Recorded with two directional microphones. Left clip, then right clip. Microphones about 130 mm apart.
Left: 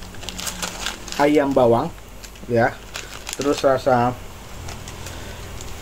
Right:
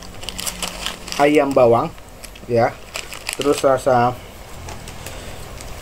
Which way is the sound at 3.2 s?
5° right (ahead or behind).